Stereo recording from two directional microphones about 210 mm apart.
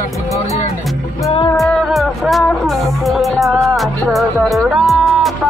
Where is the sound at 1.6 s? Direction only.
Centre (ahead or behind).